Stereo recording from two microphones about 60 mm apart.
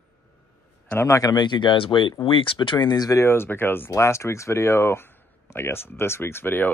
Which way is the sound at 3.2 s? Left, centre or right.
Left.